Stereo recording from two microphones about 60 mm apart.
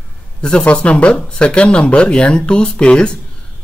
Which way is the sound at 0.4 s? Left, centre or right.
Centre.